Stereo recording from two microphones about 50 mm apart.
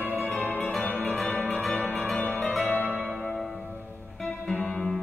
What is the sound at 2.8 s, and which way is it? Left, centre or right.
Music, right.